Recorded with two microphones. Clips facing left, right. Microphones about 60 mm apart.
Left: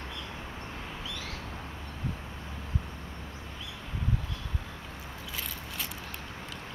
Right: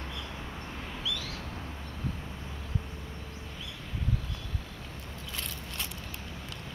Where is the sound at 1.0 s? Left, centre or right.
Left.